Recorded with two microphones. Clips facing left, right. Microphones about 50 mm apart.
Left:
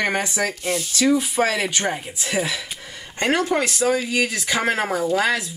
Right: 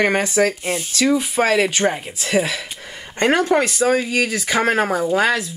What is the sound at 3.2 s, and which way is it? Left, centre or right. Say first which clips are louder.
Speech: right 4 dB; right.